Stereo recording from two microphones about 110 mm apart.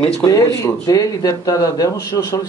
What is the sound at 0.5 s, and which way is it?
Speech, 30° left (ahead or behind).